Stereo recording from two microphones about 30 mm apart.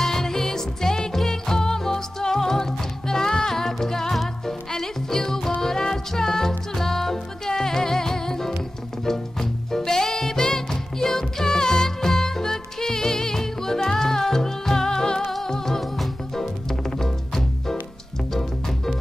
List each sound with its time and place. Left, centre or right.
0.0 s music: centre